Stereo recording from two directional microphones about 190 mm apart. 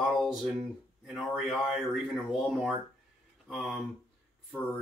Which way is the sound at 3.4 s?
Centre (ahead or behind).